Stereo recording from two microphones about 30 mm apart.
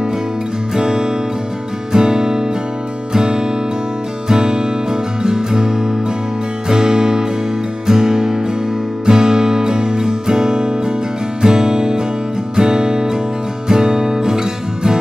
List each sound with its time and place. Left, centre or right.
0.7 s music: centre